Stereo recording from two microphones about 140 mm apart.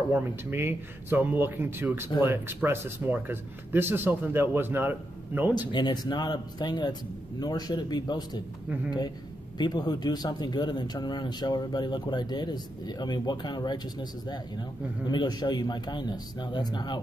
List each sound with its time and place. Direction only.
0.1 s speech: 15° right (ahead or behind)
5.5 s speech: 30° left (ahead or behind)
9.6 s speech: 30° left (ahead or behind)